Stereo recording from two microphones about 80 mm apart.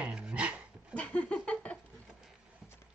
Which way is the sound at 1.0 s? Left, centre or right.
Centre.